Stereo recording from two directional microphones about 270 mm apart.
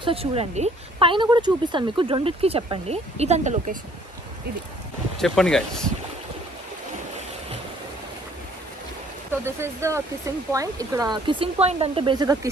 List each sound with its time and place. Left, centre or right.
0.0 s speech: right
5.2 s speech: centre
9.4 s speech: centre